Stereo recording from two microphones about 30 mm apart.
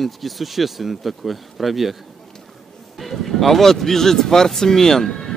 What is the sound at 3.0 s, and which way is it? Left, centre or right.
Speech, centre.